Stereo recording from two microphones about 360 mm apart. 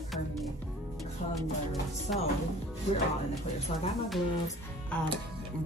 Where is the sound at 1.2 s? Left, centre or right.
Left.